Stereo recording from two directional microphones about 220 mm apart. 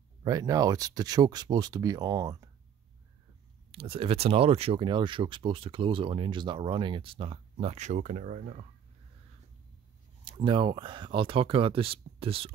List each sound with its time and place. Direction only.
0.2 s speech: 15° right (ahead or behind)
3.7 s speech: 25° right (ahead or behind)
10.2 s speech: 20° right (ahead or behind)